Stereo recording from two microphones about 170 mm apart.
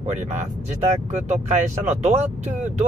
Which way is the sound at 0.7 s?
40° right (ahead or behind).